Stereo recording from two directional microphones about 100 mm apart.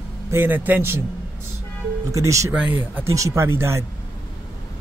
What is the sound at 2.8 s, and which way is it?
A man's voice, 20° right (ahead or behind).